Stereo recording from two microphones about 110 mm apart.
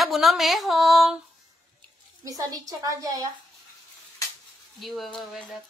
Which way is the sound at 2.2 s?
30° right (ahead or behind).